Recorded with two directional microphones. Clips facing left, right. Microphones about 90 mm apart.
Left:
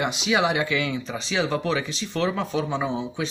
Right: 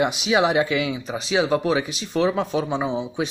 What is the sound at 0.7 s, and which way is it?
Speech, 10° right (ahead or behind).